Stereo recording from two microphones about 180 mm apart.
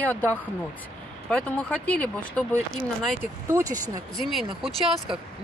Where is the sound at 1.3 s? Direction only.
5° left (ahead or behind).